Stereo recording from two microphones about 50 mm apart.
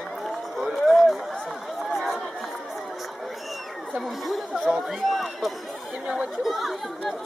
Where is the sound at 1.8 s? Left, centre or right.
Centre.